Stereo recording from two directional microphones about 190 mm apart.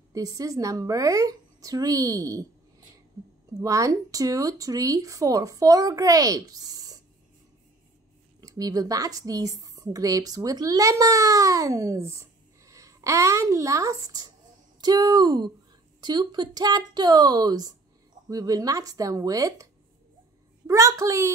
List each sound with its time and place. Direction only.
0.1 s speech: 20° right (ahead or behind)
3.6 s speech: 15° right (ahead or behind)
8.4 s speech: 20° right (ahead or behind)